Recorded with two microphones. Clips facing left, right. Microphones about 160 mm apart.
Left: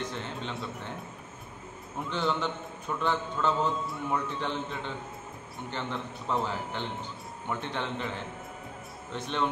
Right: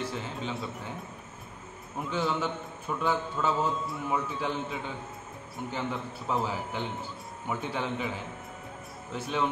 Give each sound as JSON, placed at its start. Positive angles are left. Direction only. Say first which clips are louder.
{"t": 0.0, "sound": "a man's voice", "louder": "right 1 dB", "side_deg": -5}
{"t": 2.0, "sound": "a man's voice", "louder": "even", "side_deg": -5}
{"t": 9.1, "sound": "a man's voice", "louder": "right 1 dB", "side_deg": -5}